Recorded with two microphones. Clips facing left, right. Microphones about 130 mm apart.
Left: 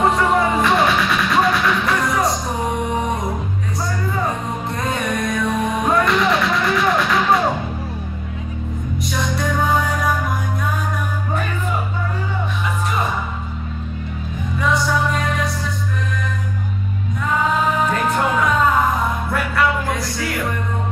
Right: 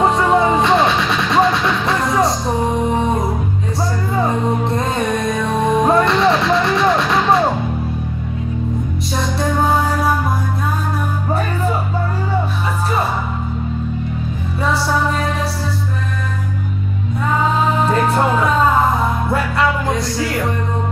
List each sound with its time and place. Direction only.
0.0 s music: 25° right (ahead or behind)
4.2 s music: 25° right (ahead or behind)
9.1 s music: 30° right (ahead or behind)
14.6 s music: 30° right (ahead or behind)
17.8 s music: 30° right (ahead or behind)